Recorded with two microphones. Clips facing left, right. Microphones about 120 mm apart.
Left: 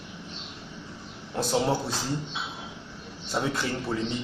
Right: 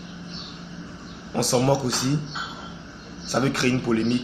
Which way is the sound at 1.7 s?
90° right.